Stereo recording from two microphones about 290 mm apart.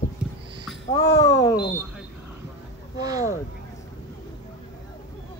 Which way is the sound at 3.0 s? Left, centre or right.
Centre.